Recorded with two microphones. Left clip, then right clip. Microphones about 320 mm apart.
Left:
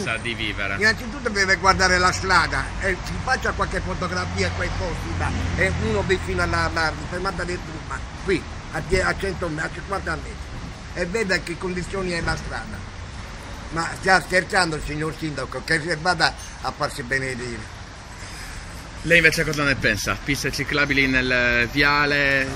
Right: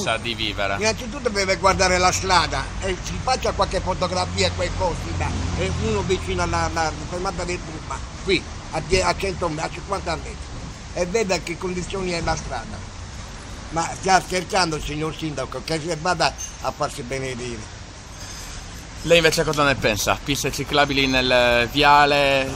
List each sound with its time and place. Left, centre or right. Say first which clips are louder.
0.0 s speech: right 2 dB; centre
13.7 s speech: even; centre
19.0 s speech: even; centre